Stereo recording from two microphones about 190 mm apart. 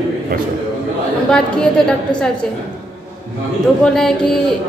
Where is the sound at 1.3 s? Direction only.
5° left (ahead or behind).